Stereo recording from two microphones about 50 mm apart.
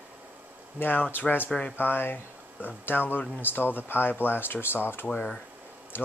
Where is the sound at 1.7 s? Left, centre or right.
Left.